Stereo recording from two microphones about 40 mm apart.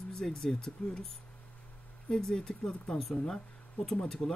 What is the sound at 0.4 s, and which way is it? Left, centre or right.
Speech, centre.